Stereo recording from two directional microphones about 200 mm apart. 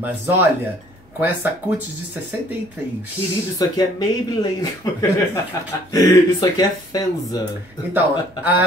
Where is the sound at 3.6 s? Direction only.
20° left (ahead or behind).